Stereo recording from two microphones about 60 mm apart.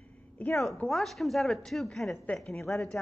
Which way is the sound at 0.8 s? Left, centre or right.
Centre.